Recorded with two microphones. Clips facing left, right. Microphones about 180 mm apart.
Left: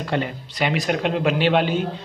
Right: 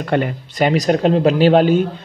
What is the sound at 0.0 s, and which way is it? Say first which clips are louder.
Speech: right 6 dB; 55° right (ahead or behind).